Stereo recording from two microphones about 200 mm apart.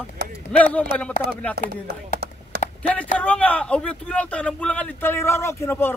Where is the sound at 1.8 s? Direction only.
55° right (ahead or behind).